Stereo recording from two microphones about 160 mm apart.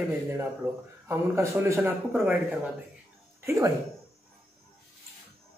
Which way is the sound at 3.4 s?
20° right (ahead or behind).